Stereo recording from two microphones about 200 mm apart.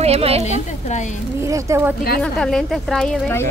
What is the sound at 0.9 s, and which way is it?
Speech, 35° left (ahead or behind).